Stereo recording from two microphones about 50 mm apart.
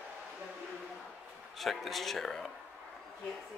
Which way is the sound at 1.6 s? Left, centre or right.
Centre.